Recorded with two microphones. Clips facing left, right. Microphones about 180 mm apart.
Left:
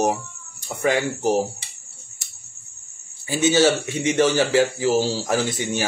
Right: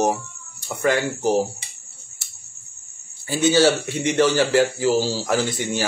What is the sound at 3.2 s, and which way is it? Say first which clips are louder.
Speech: right 1 dB; 15° left (ahead or behind).